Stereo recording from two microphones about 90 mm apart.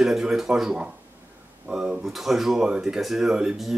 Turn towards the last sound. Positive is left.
turn(degrees=-5)  # may be behind; listen again after turning